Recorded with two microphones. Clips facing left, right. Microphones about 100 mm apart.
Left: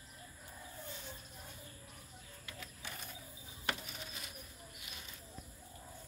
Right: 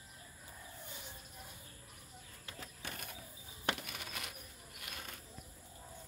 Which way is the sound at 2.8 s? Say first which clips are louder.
Right 2 dB; 60° right (ahead or behind).